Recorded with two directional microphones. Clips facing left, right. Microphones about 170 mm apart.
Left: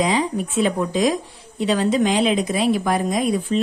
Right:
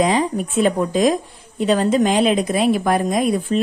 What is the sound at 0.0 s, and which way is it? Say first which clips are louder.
A woman's voice: right 3 dB; 50° right (ahead or behind).